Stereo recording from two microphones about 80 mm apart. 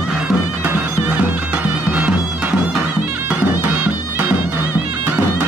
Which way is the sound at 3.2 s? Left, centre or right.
Right.